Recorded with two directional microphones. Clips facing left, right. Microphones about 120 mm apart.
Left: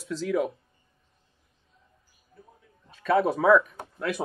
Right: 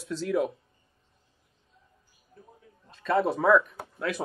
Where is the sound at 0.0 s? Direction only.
Centre (ahead or behind).